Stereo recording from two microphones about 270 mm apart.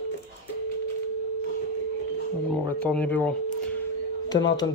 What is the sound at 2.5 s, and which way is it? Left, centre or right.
Speech, centre.